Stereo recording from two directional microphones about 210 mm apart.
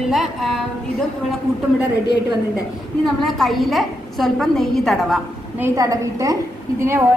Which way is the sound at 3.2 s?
Centre (ahead or behind).